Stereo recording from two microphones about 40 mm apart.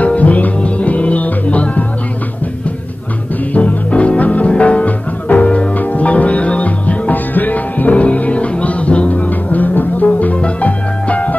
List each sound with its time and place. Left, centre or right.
0.0 s music: left
3.5 s music: left